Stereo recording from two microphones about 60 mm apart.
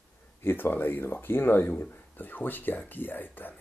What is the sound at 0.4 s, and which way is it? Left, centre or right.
Speech, left.